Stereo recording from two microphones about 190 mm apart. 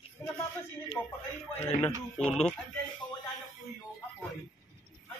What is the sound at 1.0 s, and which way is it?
Speech, 10° left (ahead or behind).